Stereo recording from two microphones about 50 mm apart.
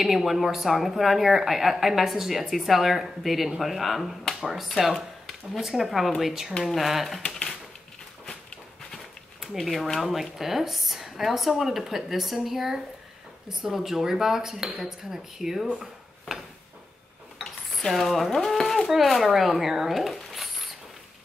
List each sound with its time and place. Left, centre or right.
0.0 s speech: centre
7.2 s typewriter: centre
9.4 s speech: centre
17.7 s speech: centre